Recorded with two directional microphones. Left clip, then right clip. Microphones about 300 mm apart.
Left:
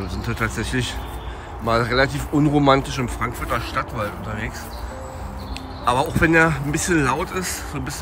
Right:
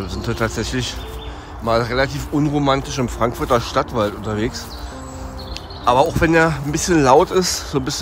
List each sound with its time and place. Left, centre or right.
0.1 s speech: centre
5.9 s speech: centre